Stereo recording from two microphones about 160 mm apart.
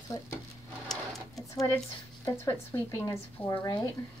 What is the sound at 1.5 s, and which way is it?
Speech, 20° left (ahead or behind).